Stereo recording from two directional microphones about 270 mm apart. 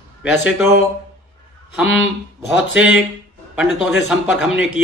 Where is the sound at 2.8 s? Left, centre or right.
Centre.